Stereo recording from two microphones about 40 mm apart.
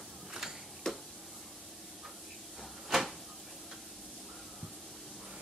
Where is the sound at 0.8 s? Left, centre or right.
Centre.